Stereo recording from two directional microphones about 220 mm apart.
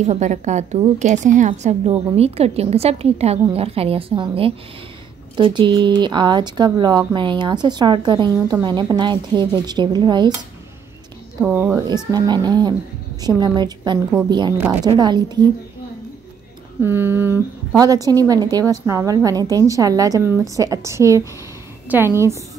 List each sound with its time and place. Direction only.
0.0 s a woman's voice: 30° right (ahead or behind)
11.4 s a woman's voice: 10° right (ahead or behind)
14.2 s a woman's voice: 5° right (ahead or behind); by 15.5 s 20° right (ahead or behind)
16.8 s a woman's voice: 10° right (ahead or behind)